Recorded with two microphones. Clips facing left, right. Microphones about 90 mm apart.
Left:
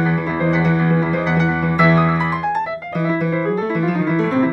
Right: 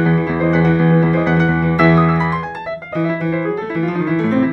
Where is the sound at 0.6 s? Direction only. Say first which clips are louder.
Right 4 dB; 10° left (ahead or behind).